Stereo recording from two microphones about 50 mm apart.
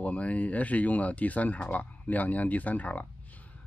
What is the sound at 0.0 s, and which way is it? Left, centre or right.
Speech, left.